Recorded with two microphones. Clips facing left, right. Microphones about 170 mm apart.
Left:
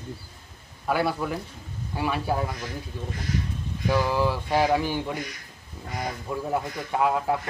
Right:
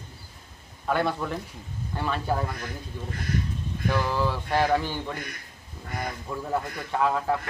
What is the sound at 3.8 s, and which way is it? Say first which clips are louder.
A man's voice: left 3 dB; 10° left (ahead or behind).